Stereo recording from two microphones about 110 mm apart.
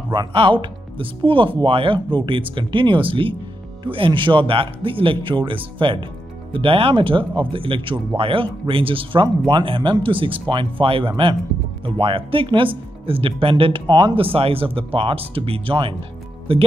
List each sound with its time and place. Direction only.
0.1 s speech: 50° right (ahead or behind)
14.2 s speech: 60° right (ahead or behind)